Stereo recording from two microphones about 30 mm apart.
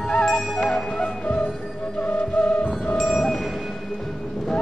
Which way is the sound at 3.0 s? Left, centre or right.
Centre.